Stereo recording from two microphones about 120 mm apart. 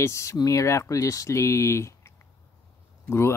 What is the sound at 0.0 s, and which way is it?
Speech, 25° left (ahead or behind).